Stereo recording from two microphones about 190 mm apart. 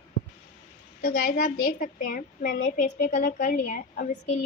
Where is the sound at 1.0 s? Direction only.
55° left (ahead or behind).